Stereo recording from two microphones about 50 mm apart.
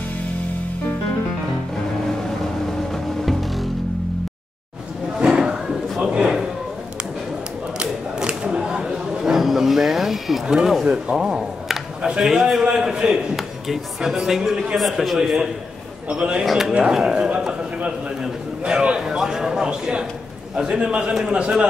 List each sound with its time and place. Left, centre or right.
2.0 s music: centre
5.2 s music: centre
7.8 s chatter: centre
10.4 s a sound: centre
12.2 s a man's voice: centre
12.6 s a sound: centre
13.4 s speech: centre
14.8 s a man's voice: centre
16.1 s a man's voice: right
16.4 s a man's voice: centre